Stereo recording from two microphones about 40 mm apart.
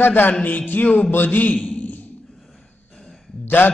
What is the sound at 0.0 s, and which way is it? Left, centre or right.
Mantra, left.